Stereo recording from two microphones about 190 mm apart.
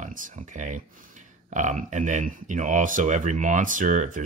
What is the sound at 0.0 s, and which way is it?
Speech, 45° right (ahead or behind).